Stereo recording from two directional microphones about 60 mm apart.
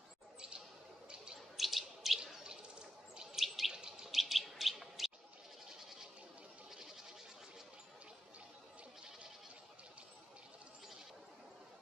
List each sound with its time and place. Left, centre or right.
1.1 s a sound: centre
1.6 s bird: centre
5.7 s goat: centre